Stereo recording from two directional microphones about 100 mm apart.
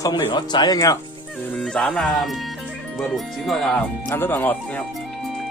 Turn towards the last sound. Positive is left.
turn(degrees=15)  # may be behind; listen again after turning